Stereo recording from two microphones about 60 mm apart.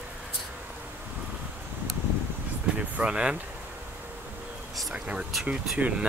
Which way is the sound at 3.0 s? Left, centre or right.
Centre.